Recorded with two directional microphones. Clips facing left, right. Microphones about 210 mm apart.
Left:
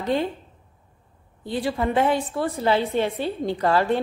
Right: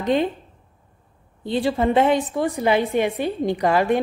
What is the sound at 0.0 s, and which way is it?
Speech, 20° right (ahead or behind).